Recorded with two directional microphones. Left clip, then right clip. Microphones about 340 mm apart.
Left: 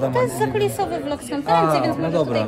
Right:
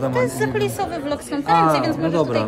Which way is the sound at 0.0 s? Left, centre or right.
Centre.